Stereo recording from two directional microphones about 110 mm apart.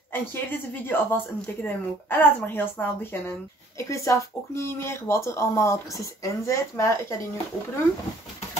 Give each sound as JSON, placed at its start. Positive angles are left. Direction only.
{"t": 0.1, "sound": "speech", "side_deg": 20}